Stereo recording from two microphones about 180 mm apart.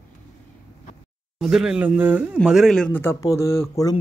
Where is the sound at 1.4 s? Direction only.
5° right (ahead or behind).